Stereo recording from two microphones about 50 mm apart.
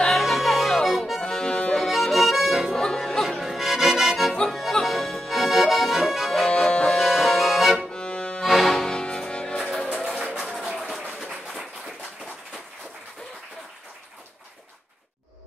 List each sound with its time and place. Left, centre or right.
0.2 s music: centre
1.3 s accordion: centre
1.9 s accordion: centre
2.7 s music: centre
3.3 s accordion: centre
6.4 s music: centre
7.0 s accordion: centre
7.9 s accordion: centre
8.4 s accordion: centre
9.6 s music: centre
10.0 s music: centre
11.1 s a sound: centre